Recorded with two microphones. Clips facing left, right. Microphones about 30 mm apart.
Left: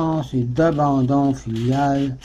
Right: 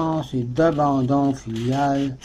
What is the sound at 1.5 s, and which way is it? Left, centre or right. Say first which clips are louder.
Speech: left 2 dB; left.